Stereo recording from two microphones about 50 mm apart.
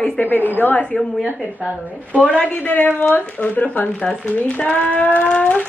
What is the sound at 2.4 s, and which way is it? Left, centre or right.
Speech, left.